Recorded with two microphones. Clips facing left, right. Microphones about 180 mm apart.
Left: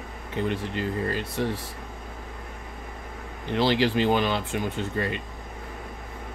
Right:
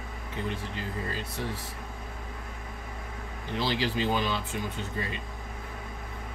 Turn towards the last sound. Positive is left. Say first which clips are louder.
# left 6 dB
turn(degrees=65)  # may be behind; listen again after turning